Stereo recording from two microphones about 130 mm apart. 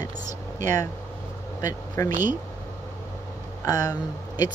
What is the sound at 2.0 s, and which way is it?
Speech, 20° left (ahead or behind).